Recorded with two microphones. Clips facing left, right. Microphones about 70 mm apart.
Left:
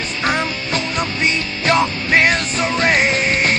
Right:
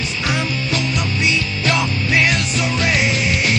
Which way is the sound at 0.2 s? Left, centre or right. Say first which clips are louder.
Left 3 dB; left.